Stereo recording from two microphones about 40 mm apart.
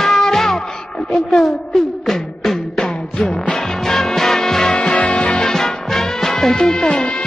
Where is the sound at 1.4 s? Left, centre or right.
Centre.